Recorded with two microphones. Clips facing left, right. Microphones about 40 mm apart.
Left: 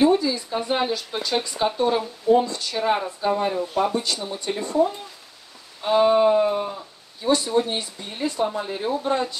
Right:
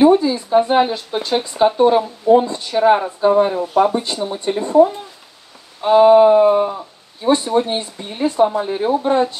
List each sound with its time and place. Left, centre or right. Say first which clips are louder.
0.0 s speech: right 7 dB; right
5.9 s speech: right 8 dB; right